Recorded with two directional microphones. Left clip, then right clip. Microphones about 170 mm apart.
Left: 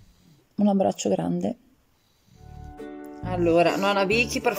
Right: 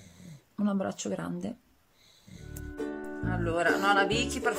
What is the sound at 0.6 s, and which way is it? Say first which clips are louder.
Speech: left 10 dB; 15° left (ahead or behind).